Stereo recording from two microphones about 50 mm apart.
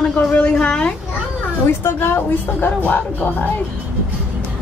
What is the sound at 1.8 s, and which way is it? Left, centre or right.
Speech, left.